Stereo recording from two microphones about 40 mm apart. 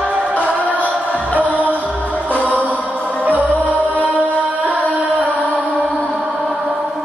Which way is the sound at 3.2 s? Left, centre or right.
Right.